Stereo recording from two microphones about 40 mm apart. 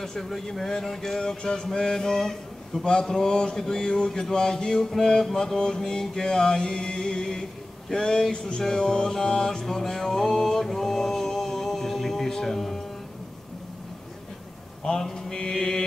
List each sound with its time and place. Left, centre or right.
0.0 s mantra: centre
8.5 s music: left
14.8 s a man's voice: centre
15.4 s mantra: centre